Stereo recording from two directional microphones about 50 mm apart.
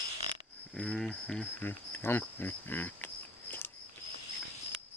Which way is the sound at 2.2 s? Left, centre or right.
Left.